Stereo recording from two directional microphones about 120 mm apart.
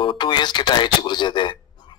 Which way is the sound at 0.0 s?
40° left (ahead or behind).